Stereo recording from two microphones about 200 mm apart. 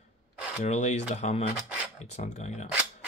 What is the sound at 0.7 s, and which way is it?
Cutlery, 35° left (ahead or behind).